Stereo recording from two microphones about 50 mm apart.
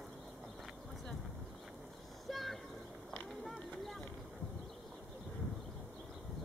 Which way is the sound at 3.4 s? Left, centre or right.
Centre.